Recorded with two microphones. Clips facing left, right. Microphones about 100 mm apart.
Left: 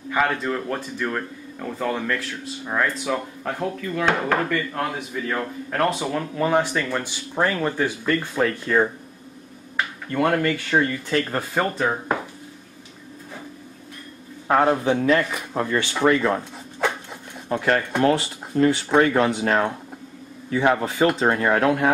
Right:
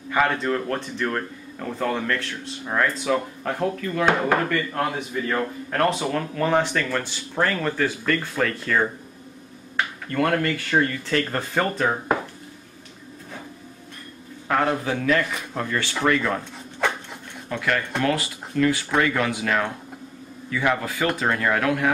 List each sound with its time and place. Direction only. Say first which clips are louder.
0.1 s speech: right 1 dB; centre (ahead or behind)
6.3 s speech: left 1 dB; 15° left (ahead or behind)
10.1 s speech: left 1 dB; 15° left (ahead or behind)
14.5 s speech: left 4 dB; 25° left (ahead or behind)
17.5 s speech: left 4 dB; 35° left (ahead or behind)